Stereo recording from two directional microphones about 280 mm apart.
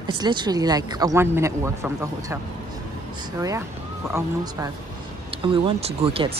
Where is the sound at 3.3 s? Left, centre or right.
Centre.